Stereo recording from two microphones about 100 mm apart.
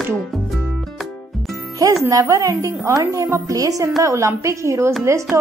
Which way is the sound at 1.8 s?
35° right (ahead or behind).